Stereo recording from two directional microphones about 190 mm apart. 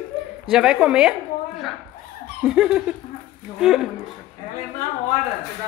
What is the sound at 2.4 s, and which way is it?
A woman's voice, 5° right (ahead or behind).